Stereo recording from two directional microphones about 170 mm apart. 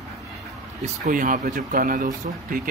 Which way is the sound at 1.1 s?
50° right (ahead or behind).